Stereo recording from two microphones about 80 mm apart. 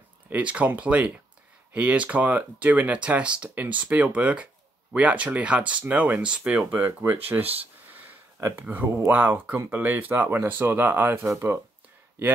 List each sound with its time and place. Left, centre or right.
0.3 s speech: centre
6.7 s speech: right
8.5 s speech: right